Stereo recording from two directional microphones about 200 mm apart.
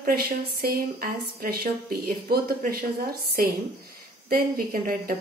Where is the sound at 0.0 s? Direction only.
50° right (ahead or behind).